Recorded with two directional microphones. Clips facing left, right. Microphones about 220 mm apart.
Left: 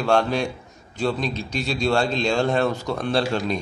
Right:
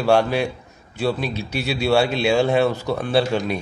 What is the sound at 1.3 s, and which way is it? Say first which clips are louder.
Speech: right 1 dB; 65° right (ahead or behind).